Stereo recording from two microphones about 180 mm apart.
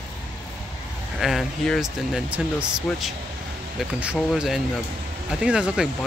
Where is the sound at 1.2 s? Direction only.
Centre (ahead or behind).